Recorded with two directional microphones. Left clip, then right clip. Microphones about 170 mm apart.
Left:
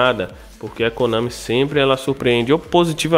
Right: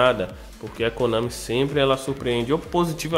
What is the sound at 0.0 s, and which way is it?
A man's voice, 25° left (ahead or behind).